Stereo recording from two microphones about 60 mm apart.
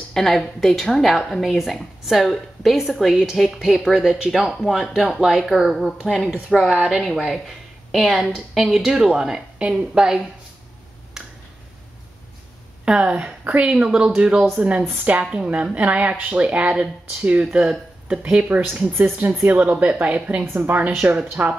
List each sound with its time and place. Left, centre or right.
0.1 s a woman's voice: centre
11.2 s tick-tock: centre
12.8 s a woman's voice: centre
14.9 s a woman's voice: right
16.6 s speech: centre
18.0 s a woman's voice: right
20.4 s a woman's voice: right